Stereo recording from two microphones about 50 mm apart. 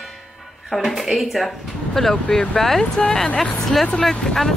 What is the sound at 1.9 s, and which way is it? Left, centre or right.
Speech, centre.